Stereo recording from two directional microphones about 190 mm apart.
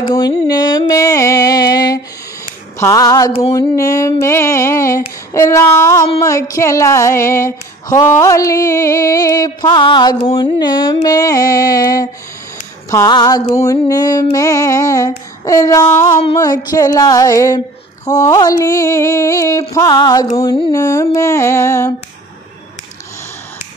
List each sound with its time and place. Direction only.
0.0 s mantra: 20° left (ahead or behind)
3.5 s female singing: 15° left (ahead or behind)
10.3 s mantra: 20° left (ahead or behind)
12.9 s female singing: 20° left (ahead or behind)
16.3 s mantra: 20° left (ahead or behind)
18.0 s female singing: 20° left (ahead or behind)
19.7 s mantra: 20° left (ahead or behind)
20.3 s female singing: 15° left (ahead or behind)